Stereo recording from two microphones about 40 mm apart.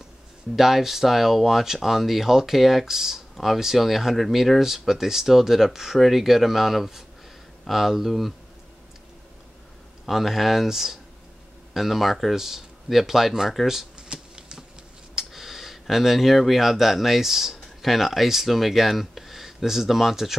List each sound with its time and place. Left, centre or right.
0.6 s speech: centre
10.0 s speech: centre
13.9 s shuffling cards: right
15.1 s speech: centre